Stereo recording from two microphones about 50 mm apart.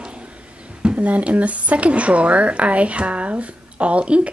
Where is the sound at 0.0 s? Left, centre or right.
Right.